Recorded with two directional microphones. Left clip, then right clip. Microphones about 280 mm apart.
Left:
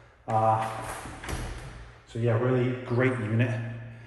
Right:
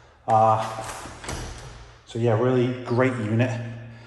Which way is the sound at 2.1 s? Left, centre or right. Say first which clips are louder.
Right 5 dB; right.